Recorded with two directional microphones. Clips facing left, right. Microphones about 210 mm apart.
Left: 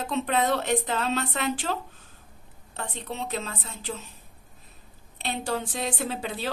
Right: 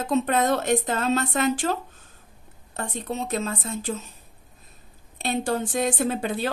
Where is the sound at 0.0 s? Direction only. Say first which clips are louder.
Right 4 dB; 45° right (ahead or behind).